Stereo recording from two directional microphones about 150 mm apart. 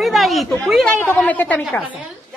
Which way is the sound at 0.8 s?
10° left (ahead or behind).